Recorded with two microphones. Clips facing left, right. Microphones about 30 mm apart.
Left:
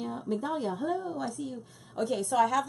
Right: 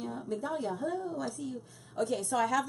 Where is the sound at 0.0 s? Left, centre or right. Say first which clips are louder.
Left 3 dB; centre.